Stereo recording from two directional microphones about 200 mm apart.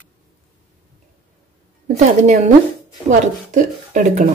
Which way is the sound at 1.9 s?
35° right (ahead or behind).